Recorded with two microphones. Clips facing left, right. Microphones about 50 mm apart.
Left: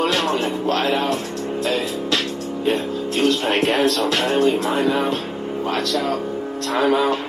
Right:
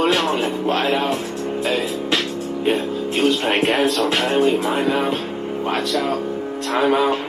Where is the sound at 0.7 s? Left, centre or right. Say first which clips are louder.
Right 1 dB; centre.